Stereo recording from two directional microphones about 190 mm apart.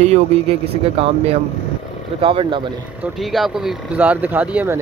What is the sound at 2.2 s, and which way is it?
Speech, 25° right (ahead or behind).